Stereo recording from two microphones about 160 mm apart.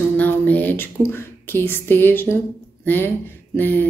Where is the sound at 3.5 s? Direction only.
10° left (ahead or behind).